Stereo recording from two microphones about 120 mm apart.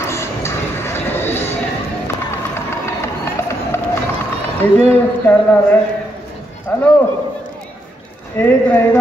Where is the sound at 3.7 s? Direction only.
20° left (ahead or behind).